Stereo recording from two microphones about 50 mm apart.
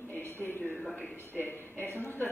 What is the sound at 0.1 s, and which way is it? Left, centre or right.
Music, left.